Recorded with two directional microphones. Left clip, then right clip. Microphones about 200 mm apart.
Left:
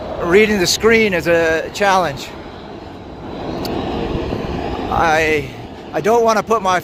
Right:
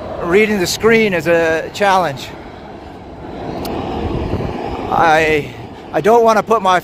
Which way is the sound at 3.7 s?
15° left (ahead or behind).